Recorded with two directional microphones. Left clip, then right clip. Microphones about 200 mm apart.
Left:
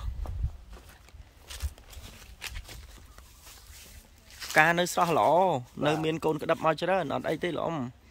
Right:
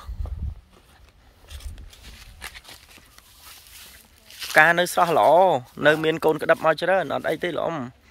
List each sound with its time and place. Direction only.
1.5 s a sound: centre (ahead or behind)
2.4 s walk: 15° right (ahead or behind)
4.5 s speech: 5° left (ahead or behind)